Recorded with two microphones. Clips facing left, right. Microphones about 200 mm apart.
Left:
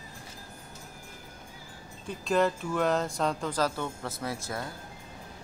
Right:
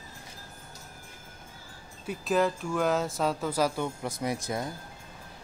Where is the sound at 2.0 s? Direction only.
5° right (ahead or behind).